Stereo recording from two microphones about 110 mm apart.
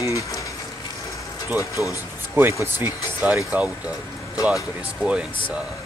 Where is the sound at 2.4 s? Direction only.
20° right (ahead or behind).